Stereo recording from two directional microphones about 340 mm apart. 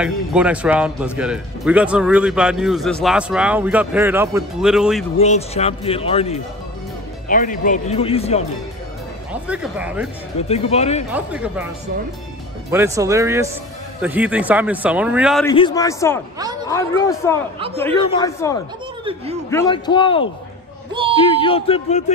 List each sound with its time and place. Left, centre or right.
0.0 s speech: centre
5.1 s speech: centre
9.3 s speech: centre
10.5 s speech: centre
11.1 s speech: centre
12.7 s speech: centre
15.5 s speech: centre